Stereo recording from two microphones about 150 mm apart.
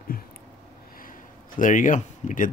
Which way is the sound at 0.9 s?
65° left (ahead or behind).